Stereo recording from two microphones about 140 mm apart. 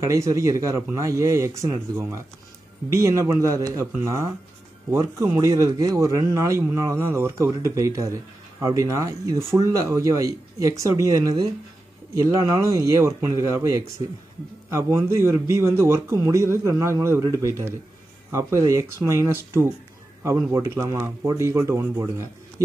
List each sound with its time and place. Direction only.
0.0 s speech: 20° right (ahead or behind)